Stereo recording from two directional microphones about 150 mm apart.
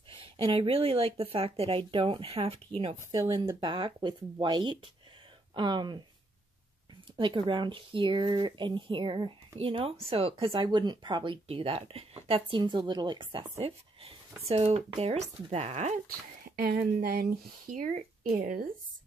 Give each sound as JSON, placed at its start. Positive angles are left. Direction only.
{"t": 0.1, "sound": "speech", "side_deg": -35}
{"t": 7.2, "sound": "speech", "side_deg": -35}
{"t": 16.4, "sound": "speech", "side_deg": -90}